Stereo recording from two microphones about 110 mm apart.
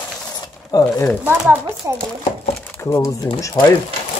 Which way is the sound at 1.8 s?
25° right (ahead or behind).